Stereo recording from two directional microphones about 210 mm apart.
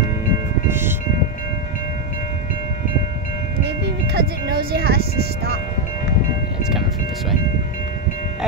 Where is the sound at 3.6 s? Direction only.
55° right (ahead or behind).